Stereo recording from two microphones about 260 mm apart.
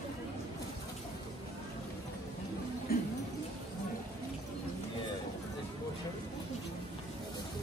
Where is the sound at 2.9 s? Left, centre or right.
Left.